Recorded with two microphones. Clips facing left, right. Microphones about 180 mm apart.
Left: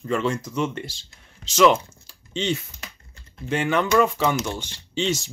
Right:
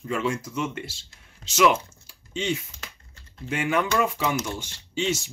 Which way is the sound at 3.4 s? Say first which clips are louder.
Left 3 dB; 5° right (ahead or behind).